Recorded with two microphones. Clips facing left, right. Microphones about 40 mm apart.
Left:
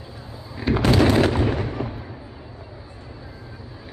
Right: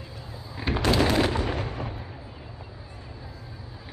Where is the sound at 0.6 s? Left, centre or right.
Centre.